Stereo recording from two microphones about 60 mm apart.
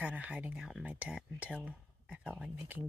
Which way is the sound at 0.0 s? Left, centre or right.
Right.